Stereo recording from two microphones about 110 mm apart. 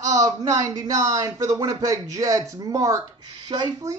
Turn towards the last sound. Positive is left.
turn(degrees=-35)  # may be behind; listen again after turning